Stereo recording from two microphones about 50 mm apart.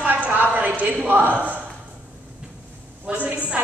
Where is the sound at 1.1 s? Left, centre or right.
Right.